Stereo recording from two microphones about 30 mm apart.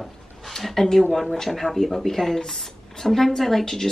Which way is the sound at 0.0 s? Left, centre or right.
Centre.